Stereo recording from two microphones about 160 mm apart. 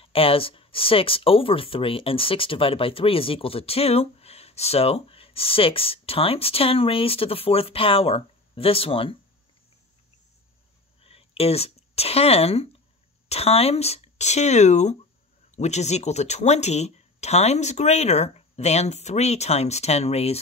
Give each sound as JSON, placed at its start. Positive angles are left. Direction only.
{"t": 0.0, "sound": "speech", "side_deg": 35}
{"t": 11.0, "sound": "speech", "side_deg": 40}